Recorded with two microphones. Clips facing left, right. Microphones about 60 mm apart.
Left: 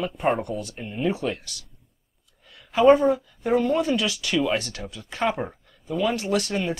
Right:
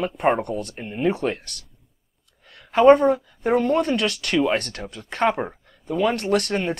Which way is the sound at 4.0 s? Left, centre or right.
Right.